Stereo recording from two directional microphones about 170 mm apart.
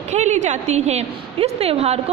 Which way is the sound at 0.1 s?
45° right (ahead or behind).